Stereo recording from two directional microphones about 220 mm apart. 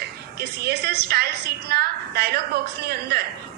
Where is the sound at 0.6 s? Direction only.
45° right (ahead or behind).